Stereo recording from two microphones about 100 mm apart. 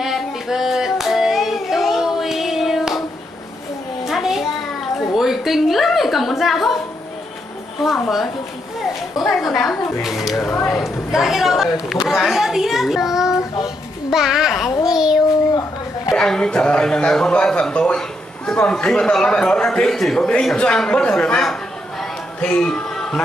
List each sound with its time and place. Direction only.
0.0 s a sound: 5° right (ahead or behind)
4.0 s a sound: 5° right (ahead or behind)
5.1 s a woman's voice: centre (ahead or behind)
7.8 s a child's voice: centre (ahead or behind)
10.4 s speech: 30° left (ahead or behind)
10.8 s a child's voice: 5° right (ahead or behind)
14.8 s child singing: 5° right (ahead or behind)
16.1 s speech: 5° left (ahead or behind)